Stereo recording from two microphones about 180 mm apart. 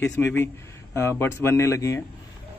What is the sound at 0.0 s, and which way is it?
A man's voice, 10° left (ahead or behind).